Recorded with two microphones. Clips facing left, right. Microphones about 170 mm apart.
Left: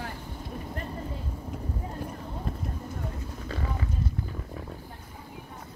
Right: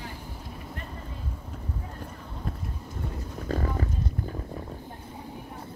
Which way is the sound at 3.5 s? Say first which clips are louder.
Right 6 dB; 45° right (ahead or behind).